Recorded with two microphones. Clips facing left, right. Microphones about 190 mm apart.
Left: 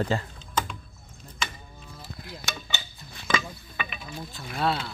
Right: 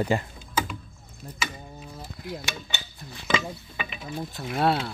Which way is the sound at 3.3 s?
25° right (ahead or behind).